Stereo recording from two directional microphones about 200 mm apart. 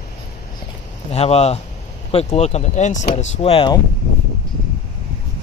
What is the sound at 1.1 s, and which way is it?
Speech, 30° left (ahead or behind).